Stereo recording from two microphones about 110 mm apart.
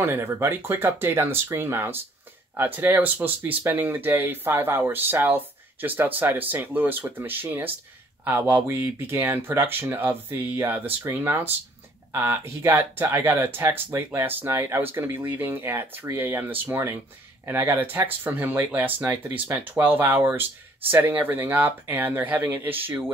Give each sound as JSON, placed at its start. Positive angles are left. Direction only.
{"t": 0.0, "sound": "speech", "side_deg": -25}